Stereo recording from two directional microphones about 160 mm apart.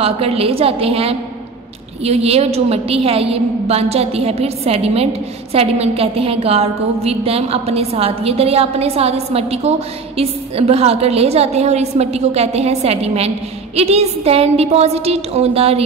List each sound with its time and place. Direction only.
0.0 s a woman's voice: 35° right (ahead or behind)